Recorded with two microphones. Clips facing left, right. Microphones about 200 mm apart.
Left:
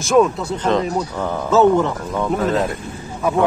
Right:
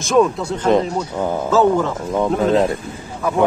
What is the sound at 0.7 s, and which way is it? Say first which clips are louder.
Speech: right 3 dB; 15° right (ahead or behind).